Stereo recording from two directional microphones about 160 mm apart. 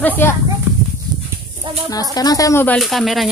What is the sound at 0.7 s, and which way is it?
Horse, 15° right (ahead or behind).